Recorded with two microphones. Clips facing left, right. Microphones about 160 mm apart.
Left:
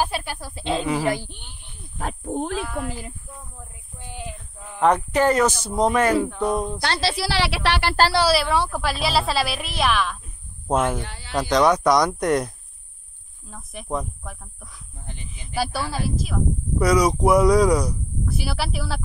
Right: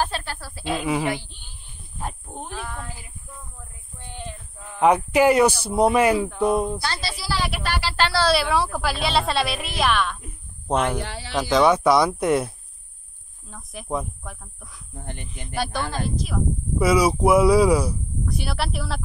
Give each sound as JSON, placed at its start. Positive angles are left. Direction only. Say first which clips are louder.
{"t": 0.0, "sound": "speech", "louder": "left 1 dB", "side_deg": 10}
{"t": 1.1, "sound": "speech", "louder": "left 3 dB", "side_deg": 50}
{"t": 2.5, "sound": "speech", "louder": "left 6 dB", "side_deg": 10}
{"t": 4.0, "sound": "a sound", "louder": "left 1 dB", "side_deg": 10}
{"t": 4.7, "sound": "speech", "louder": "right 1 dB", "side_deg": -10}
{"t": 6.8, "sound": "a woman's voice", "louder": "left 6 dB", "side_deg": 70}
{"t": 8.3, "sound": "speech", "louder": "even", "side_deg": 0}
{"t": 11.0, "sound": "speech", "louder": "right 4 dB", "side_deg": -90}
{"t": 11.3, "sound": "speech", "louder": "even", "side_deg": -5}
{"t": 15.0, "sound": "speech", "louder": "right 5 dB", "side_deg": -60}
{"t": 15.4, "sound": "speech", "louder": "left 1 dB", "side_deg": 0}